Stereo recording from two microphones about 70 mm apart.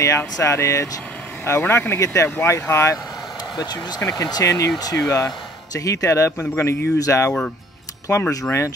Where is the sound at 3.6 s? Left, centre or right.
Left.